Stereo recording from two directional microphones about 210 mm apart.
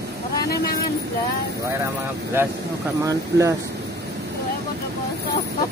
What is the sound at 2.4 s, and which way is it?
Speech, 10° right (ahead or behind).